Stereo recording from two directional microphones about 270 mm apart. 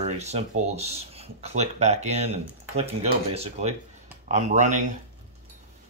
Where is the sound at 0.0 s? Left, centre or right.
Right.